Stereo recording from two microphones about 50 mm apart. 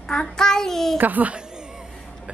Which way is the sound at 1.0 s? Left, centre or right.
Right.